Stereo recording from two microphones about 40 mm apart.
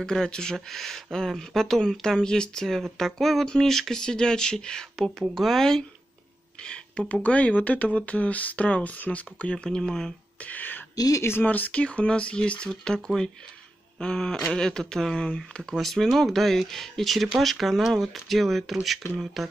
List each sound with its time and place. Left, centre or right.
0.0 s speech: centre
6.6 s speech: left; by 10.1 s centre
10.4 s speech: left
11.8 s speech: left
15.8 s speech: centre